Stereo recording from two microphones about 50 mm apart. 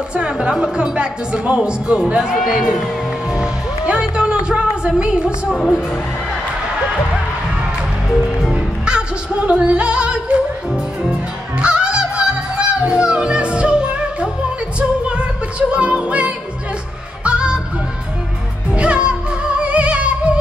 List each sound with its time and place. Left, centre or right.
0.1 s speech: centre
3.3 s music: centre
4.5 s speech: centre
8.4 s music: centre
8.8 s singing: centre
11.6 s honk: centre
14.8 s music: right
18.8 s music: right